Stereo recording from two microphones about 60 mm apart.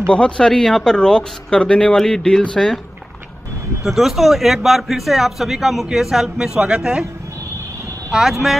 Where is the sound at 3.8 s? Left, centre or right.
Centre.